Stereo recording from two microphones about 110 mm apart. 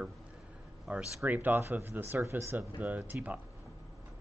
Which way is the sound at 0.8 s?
15° right (ahead or behind).